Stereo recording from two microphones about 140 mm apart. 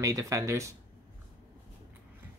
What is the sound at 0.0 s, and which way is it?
Speech, 20° right (ahead or behind).